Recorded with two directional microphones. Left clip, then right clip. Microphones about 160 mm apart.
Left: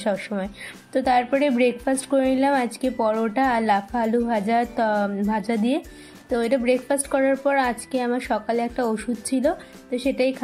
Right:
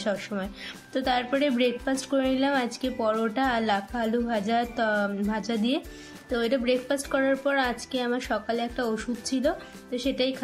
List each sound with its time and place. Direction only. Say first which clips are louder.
0.0 s a woman's voice: left 4 dB; 20° left (ahead or behind)